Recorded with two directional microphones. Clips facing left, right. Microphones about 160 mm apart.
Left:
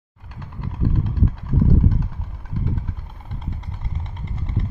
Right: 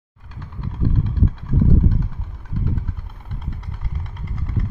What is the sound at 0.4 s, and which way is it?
Vehicle, 10° left (ahead or behind).